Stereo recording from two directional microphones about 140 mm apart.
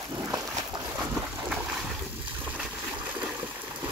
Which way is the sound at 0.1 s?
20° right (ahead or behind).